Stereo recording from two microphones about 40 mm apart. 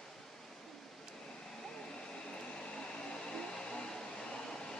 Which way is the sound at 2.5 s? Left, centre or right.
Centre.